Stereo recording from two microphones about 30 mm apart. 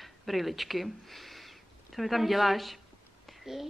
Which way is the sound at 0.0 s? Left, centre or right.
Centre.